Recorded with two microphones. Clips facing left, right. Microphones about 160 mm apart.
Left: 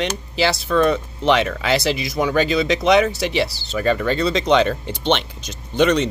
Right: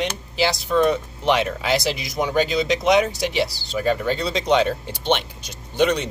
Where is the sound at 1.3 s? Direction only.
80° left.